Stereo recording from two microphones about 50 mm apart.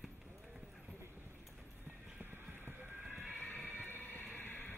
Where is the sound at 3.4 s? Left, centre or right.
Left.